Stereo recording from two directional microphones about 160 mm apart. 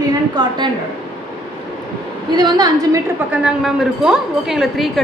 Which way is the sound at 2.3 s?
25° right (ahead or behind).